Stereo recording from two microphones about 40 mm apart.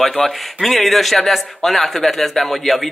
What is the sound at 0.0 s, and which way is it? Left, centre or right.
Speech, centre.